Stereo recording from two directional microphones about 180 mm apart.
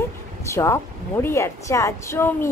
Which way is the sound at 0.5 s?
15° left (ahead or behind).